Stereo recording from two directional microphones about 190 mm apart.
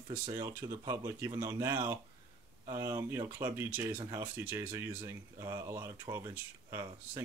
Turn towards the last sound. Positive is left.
turn(degrees=-15)  # may be behind; listen again after turning